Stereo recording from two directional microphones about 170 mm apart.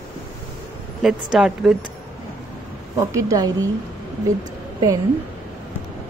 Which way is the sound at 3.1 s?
20° right (ahead or behind).